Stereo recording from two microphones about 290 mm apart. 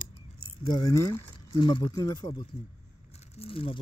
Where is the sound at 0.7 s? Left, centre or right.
Centre.